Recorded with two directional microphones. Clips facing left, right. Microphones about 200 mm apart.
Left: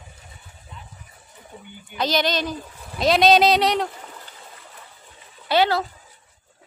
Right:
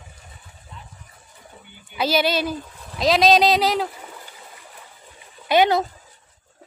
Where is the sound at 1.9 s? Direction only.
10° right (ahead or behind).